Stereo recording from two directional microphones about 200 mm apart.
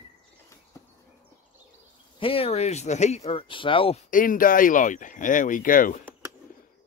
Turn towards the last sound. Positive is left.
turn(degrees=45)  # may be behind; listen again after turning